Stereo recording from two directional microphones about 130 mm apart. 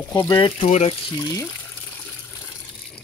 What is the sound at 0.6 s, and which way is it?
Speech, 60° left (ahead or behind).